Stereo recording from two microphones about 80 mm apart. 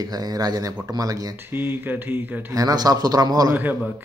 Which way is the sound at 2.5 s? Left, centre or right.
Right.